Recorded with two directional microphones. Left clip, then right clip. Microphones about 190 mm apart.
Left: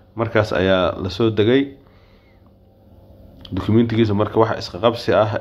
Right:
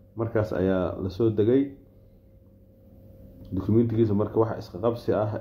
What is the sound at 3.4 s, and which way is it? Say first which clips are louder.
Speech: left 6 dB; 15° left (ahead or behind).